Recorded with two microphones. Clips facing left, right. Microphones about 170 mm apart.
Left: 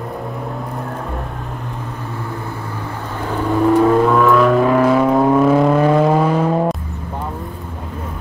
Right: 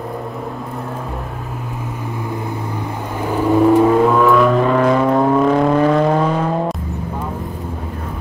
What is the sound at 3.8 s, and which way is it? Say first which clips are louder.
Vehicle: even; 5° right (ahead or behind).